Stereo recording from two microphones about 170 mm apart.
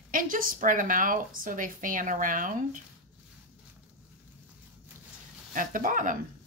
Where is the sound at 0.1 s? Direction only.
55° right (ahead or behind).